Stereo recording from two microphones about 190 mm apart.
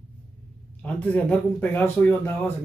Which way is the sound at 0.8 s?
5° left (ahead or behind).